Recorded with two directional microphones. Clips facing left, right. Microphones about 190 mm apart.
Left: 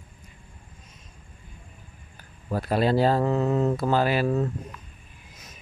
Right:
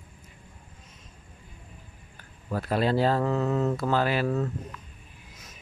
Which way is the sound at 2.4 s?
35° left (ahead or behind).